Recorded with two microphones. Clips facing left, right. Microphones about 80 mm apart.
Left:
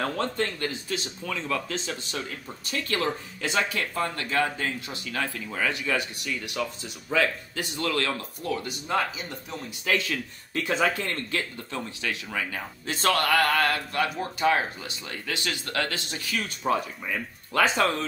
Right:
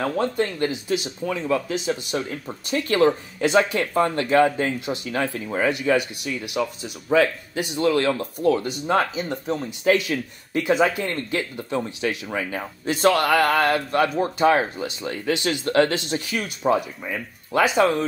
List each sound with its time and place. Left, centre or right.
0.0 s speech: centre
2.1 s speech: right
5.7 s speech: centre; by 9.6 s right
9.8 s speech: centre